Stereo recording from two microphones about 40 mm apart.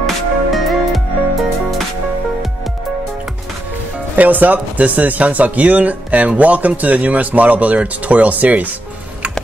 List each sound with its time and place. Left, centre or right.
0.0 s music: centre
4.2 s speech: right